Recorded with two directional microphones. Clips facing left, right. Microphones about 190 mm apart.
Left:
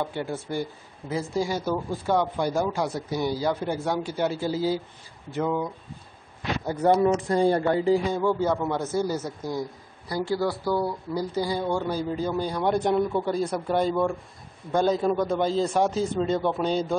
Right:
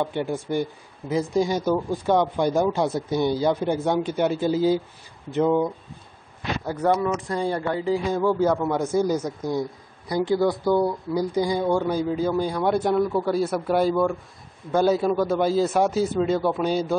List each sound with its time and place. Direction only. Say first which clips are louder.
0.0 s a man's voice: right 4 dB; 20° right (ahead or behind)
6.7 s speech: left 2 dB; 20° left (ahead or behind)
7.2 s speech: left 4 dB; 35° left (ahead or behind)
8.1 s a man's voice: right 3 dB; 5° right (ahead or behind)